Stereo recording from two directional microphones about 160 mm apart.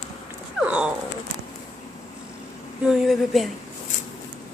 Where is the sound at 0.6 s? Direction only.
5° right (ahead or behind).